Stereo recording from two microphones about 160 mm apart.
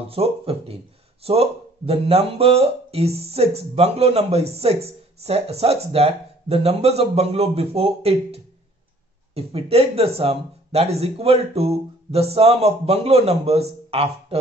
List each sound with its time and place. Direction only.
0.1 s speech: 35° right (ahead or behind)